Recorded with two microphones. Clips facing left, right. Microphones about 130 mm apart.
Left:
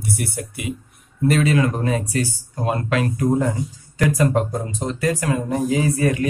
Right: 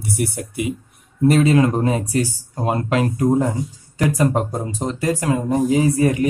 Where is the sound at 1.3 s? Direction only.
30° right (ahead or behind).